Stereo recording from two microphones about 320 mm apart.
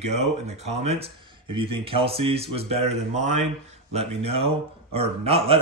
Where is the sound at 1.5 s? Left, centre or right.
Centre.